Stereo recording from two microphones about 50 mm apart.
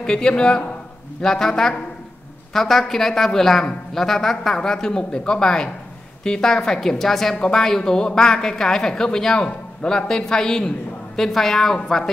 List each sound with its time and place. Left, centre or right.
0.0 s a man's voice: centre